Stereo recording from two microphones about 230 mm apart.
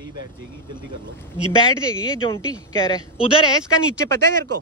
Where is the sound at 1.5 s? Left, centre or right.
Centre.